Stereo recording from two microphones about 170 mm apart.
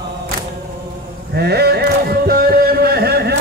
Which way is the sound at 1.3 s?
70° right (ahead or behind).